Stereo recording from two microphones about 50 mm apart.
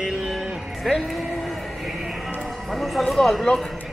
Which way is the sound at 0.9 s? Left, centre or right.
Centre.